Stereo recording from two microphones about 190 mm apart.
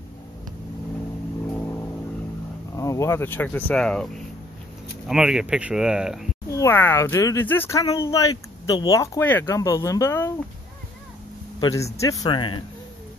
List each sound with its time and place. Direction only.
2.7 s speech: 15° left (ahead or behind); by 6.2 s 5° right (ahead or behind)
6.5 s speech: 15° left (ahead or behind)
11.6 s speech: 15° left (ahead or behind)